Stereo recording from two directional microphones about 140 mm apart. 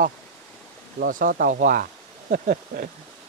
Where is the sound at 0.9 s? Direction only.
80° right.